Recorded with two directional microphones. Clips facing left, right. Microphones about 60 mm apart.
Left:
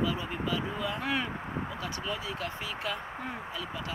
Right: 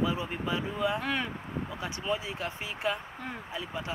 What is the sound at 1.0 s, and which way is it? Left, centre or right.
Speech, centre.